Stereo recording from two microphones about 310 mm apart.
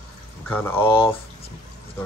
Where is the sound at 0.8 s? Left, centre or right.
Centre.